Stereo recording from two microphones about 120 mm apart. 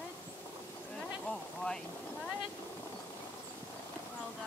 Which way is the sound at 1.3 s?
5° left (ahead or behind).